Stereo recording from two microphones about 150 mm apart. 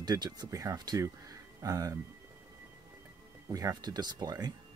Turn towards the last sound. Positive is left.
turn(degrees=-25)  # may be behind; listen again after turning